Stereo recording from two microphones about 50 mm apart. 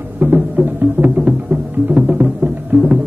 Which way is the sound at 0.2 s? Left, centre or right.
Right.